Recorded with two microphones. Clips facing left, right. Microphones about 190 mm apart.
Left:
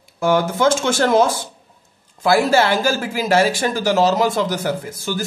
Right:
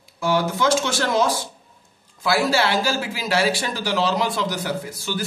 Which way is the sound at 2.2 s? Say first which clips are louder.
Left 5 dB; 50° left (ahead or behind).